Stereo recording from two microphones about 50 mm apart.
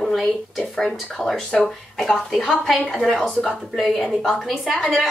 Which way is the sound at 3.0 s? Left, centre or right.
Centre.